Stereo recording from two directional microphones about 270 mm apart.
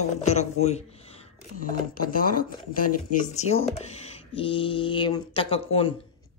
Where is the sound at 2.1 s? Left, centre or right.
Left.